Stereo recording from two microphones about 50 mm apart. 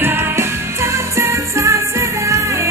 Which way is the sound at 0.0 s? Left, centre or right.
Right.